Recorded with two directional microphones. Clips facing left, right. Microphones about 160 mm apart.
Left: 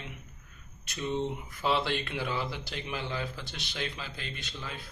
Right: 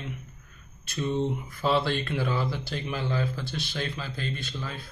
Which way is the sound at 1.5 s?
15° left (ahead or behind).